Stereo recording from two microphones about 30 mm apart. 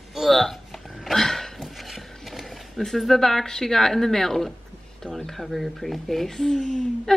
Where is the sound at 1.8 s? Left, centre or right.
Centre.